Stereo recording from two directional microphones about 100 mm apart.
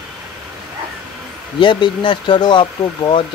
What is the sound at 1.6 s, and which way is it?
Speech, 55° left (ahead or behind).